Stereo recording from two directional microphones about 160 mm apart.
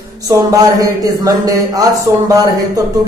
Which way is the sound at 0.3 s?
20° right (ahead or behind).